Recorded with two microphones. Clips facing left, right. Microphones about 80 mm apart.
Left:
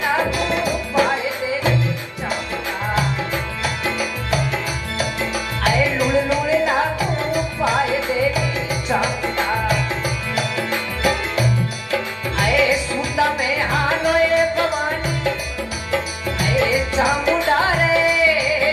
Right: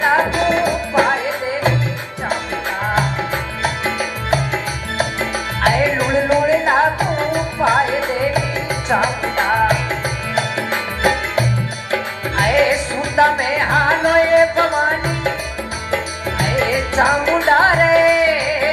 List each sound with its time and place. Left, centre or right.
0.0 s music: right
3.6 s music: right
15.9 s music: right